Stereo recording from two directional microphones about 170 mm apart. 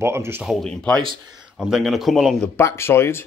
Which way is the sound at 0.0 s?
15° right (ahead or behind).